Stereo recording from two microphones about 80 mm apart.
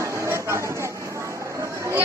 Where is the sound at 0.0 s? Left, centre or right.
Right.